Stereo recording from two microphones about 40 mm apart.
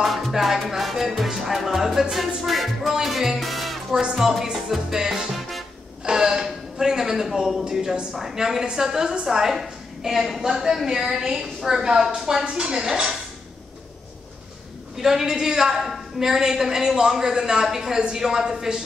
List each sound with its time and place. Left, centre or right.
0.0 s music: centre
3.9 s a woman's voice: centre
5.3 s music: centre
6.0 s a sound: centre
7.4 s a woman's voice: centre
15.0 s a woman's voice: centre